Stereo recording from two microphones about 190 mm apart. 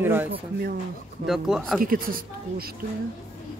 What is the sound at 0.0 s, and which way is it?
Speech, 10° right (ahead or behind).